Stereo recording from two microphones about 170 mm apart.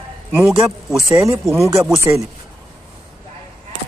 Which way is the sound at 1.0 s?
20° right (ahead or behind).